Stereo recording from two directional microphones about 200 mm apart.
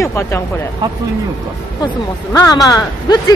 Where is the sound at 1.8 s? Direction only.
20° left (ahead or behind).